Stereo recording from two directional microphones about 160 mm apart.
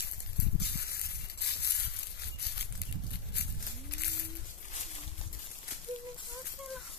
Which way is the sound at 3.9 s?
90° left.